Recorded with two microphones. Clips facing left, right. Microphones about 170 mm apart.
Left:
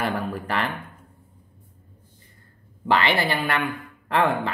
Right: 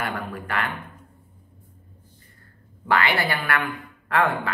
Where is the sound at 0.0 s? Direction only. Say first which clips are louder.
Left 3 dB; 35° left (ahead or behind).